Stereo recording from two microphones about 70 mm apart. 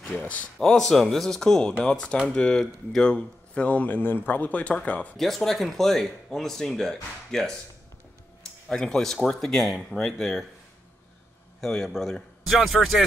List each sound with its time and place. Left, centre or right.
0.6 s speech: centre
5.1 s speech: centre
8.6 s speech: centre
11.6 s speech: centre